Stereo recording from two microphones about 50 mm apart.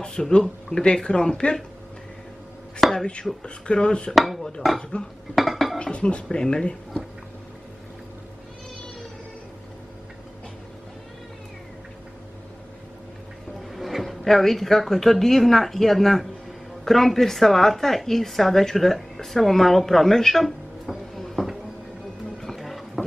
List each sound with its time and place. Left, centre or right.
0.0 s speech: centre
2.9 s speech: centre
4.1 s dishes: centre
4.9 s speech: left
5.3 s dishes: centre
5.8 s speech: left
13.7 s a woman's voice: centre
22.4 s music: centre